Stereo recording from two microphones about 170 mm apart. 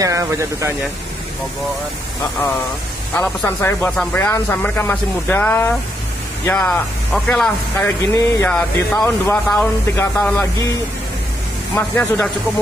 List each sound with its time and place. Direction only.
0.0 s speech: 20° right (ahead or behind)
3.2 s speech: 10° left (ahead or behind)
11.7 s speech: 10° left (ahead or behind)